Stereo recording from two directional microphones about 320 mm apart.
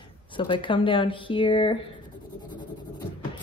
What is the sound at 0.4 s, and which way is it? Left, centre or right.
Speech, centre.